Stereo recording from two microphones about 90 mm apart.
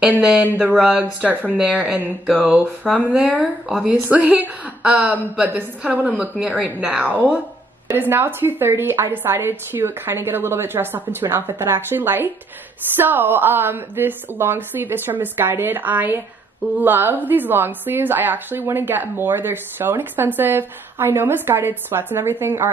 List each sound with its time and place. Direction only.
0.2 s a woman's voice: 10° right (ahead or behind)
1.5 s a woman's voice: 15° right (ahead or behind)